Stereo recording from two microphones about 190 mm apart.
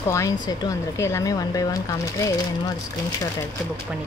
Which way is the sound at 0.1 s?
15° left (ahead or behind).